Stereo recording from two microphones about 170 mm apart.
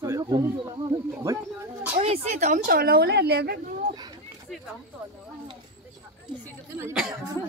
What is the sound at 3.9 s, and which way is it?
Speech, 25° right (ahead or behind).